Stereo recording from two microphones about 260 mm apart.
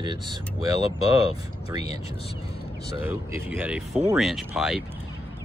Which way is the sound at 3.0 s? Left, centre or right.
Centre.